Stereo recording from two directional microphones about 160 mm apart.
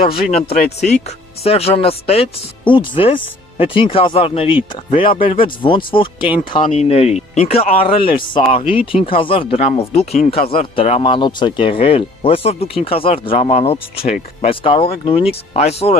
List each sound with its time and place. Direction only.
0.0 s speech: 35° left (ahead or behind)
11.0 s speech: 30° left (ahead or behind)